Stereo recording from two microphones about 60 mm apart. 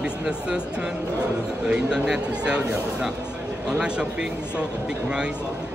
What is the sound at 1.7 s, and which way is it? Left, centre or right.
Speech, centre.